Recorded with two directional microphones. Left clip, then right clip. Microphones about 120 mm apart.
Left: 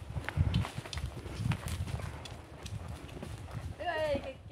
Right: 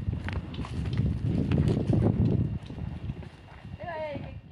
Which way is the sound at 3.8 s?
40° left (ahead or behind).